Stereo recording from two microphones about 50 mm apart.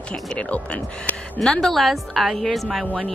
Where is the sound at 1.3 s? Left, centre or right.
Centre.